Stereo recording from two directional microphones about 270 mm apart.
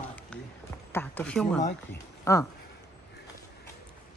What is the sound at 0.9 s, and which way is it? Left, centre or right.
Speech, centre.